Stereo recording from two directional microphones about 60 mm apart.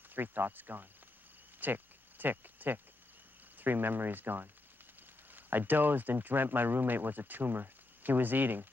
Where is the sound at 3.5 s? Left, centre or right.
Right.